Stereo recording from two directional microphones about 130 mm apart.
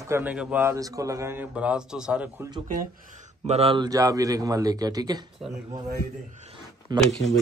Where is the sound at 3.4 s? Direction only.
50° right (ahead or behind).